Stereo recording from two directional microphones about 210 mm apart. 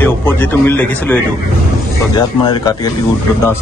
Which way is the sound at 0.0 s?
10° left (ahead or behind).